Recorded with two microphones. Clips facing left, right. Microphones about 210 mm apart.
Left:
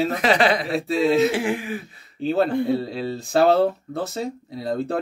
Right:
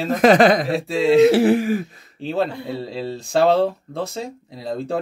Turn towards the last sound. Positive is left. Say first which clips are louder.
# even
turn(degrees=0)  # may be behind; listen again after turning